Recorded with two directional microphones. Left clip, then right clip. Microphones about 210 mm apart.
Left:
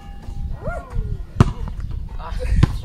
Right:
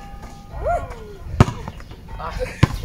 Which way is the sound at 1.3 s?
10° left (ahead or behind).